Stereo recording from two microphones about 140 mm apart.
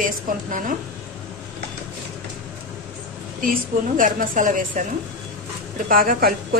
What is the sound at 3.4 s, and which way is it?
A woman's voice, 75° right (ahead or behind).